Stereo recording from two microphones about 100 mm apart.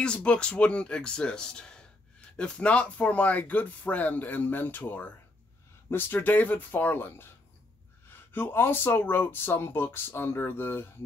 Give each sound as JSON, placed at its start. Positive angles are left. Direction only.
{"t": 0.0, "sound": "speech", "side_deg": 10}
{"t": 8.3, "sound": "speech", "side_deg": 20}